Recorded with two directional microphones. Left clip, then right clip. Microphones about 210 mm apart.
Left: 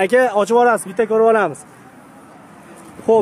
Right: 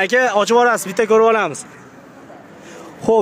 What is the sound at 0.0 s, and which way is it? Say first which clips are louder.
Speech: even; 10° left (ahead or behind).